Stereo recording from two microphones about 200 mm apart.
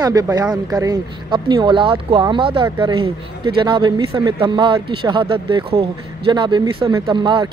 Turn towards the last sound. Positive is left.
turn(degrees=-25)  # may be behind; listen again after turning